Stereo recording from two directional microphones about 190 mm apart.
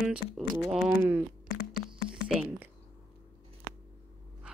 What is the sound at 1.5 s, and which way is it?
Music, 55° left (ahead or behind).